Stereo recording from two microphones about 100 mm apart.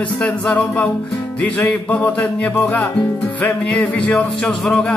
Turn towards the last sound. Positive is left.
turn(degrees=5)  # may be behind; listen again after turning